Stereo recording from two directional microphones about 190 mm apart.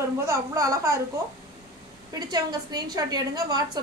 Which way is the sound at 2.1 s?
20° right (ahead or behind).